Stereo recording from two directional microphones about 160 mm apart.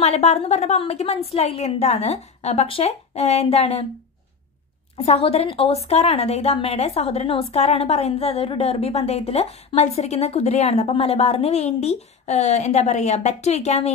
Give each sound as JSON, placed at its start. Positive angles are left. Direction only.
{"t": 0.0, "sound": "a woman's voice", "side_deg": 45}
{"t": 4.9, "sound": "a woman's voice", "side_deg": 40}